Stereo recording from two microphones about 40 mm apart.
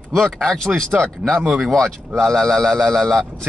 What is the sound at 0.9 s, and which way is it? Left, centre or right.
Speech, centre.